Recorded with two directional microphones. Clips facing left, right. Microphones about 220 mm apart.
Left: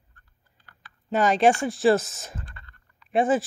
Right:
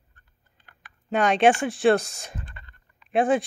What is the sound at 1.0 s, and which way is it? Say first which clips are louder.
Speech: even; centre (ahead or behind).